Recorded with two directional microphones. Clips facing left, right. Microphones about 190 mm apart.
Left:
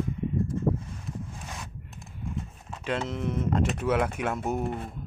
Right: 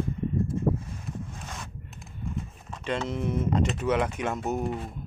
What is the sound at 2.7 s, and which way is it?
Speech, 5° left (ahead or behind).